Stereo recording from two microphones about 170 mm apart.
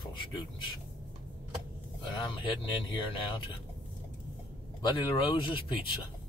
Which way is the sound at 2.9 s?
30° left (ahead or behind).